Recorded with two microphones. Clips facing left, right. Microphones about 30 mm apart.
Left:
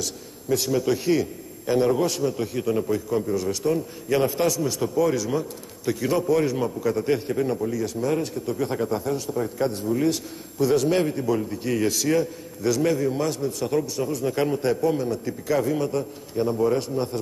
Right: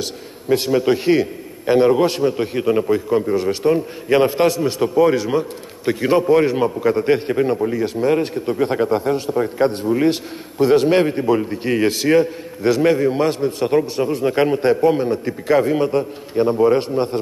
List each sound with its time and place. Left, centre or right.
0.0 s a man's voice: right